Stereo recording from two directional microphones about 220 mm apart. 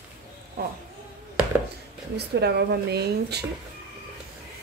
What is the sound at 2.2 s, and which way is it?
Speech, 50° right (ahead or behind).